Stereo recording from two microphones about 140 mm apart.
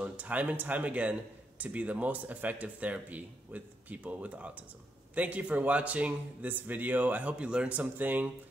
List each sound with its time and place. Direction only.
0.0 s speech: 10° right (ahead or behind)